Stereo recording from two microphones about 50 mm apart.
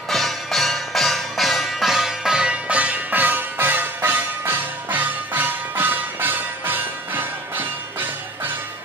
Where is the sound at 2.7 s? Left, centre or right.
Right.